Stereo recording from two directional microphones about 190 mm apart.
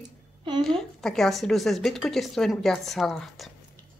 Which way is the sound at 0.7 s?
Centre (ahead or behind).